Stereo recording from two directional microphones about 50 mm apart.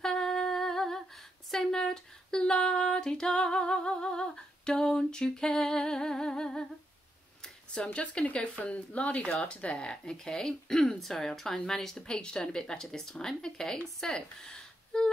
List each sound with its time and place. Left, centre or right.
0.0 s humming: centre
7.7 s a woman's voice: left